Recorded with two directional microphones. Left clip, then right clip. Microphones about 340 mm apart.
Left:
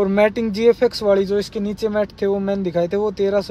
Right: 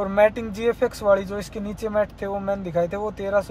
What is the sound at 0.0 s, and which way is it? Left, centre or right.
Speech, left.